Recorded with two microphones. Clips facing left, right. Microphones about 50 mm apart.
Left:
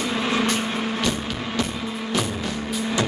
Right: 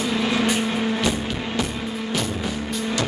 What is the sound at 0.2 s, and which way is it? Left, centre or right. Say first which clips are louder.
Vehicle: even; centre.